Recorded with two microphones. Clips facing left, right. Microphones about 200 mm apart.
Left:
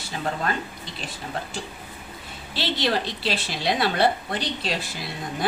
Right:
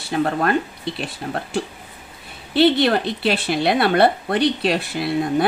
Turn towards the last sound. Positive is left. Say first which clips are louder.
# right 11 dB
turn(degrees=-60)  # may be behind; listen again after turning